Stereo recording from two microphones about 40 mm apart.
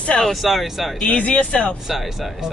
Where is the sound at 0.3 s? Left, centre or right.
Centre.